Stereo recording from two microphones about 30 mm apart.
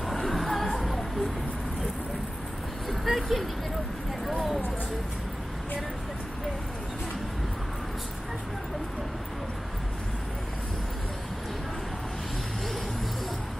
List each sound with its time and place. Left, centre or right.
0.3 s music: centre
2.9 s vehicle: centre